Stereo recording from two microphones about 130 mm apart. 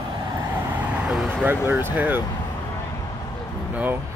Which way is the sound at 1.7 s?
15° right (ahead or behind).